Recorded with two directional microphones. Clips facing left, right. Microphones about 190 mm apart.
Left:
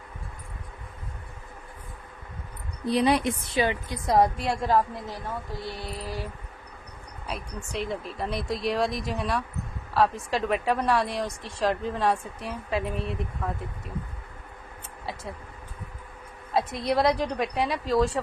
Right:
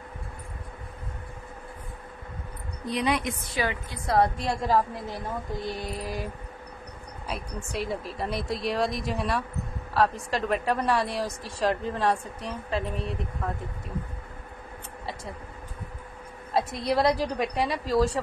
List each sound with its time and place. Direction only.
2.9 s a woman's voice: 35° left (ahead or behind); by 4.3 s 15° left (ahead or behind)
4.4 s a woman's voice: centre (ahead or behind)
5.6 s mantra: 15° right (ahead or behind)
7.2 s a woman's voice: centre (ahead or behind)
16.5 s a woman's voice: centre (ahead or behind)